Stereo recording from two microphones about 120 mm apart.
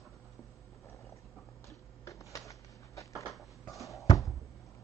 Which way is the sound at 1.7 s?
25° left (ahead or behind).